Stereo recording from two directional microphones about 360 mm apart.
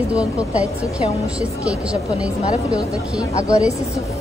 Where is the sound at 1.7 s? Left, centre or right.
Centre.